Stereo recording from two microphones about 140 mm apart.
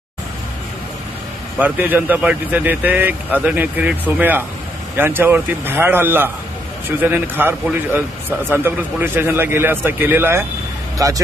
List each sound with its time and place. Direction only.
1.6 s a man's voice: 10° right (ahead or behind)